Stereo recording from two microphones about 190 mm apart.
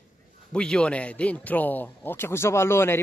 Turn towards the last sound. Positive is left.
turn(degrees=15)  # may be behind; listen again after turning